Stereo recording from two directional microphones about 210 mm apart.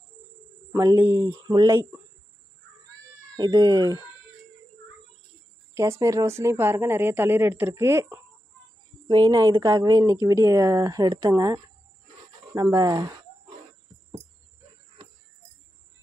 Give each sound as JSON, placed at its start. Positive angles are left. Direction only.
{"t": 0.7, "sound": "speech", "side_deg": -10}
{"t": 3.3, "sound": "speech", "side_deg": -20}
{"t": 5.8, "sound": "speech", "side_deg": -15}